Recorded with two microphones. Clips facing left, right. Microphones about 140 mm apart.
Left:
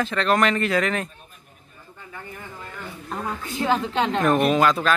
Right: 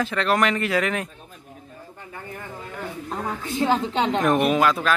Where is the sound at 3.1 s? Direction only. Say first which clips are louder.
Even; 25° right (ahead or behind); by 4.9 s 5° right (ahead or behind).